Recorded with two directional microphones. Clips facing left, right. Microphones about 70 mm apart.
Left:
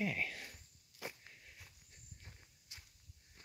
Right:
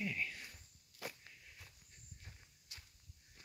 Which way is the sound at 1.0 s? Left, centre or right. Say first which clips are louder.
Even; centre.